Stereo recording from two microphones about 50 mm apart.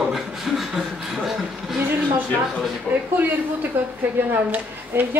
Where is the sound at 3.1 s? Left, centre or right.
Right.